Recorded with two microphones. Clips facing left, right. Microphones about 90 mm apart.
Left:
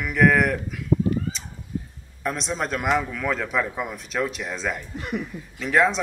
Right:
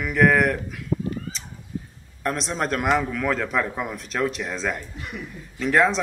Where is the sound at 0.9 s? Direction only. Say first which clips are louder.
Left 5 dB; 90° left.